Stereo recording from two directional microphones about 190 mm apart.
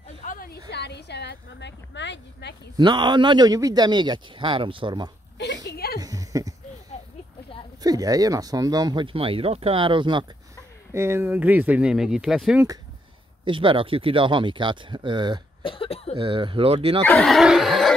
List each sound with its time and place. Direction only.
0.2 s a sound: 45° left (ahead or behind)
0.7 s speech: 60° left (ahead or behind)
2.8 s speech: 25° right (ahead or behind)
5.9 s a sound: 20° right (ahead or behind)
7.8 s speech: 20° right (ahead or behind)
10.9 s speech: 15° right (ahead or behind)
13.5 s speech: 25° right (ahead or behind)
15.6 s speech: 30° left (ahead or behind)
16.2 s speech: 25° right (ahead or behind)
17.0 s a sound: 5° left (ahead or behind)